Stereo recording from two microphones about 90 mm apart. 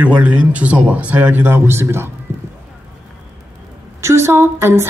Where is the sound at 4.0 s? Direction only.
30° right (ahead or behind).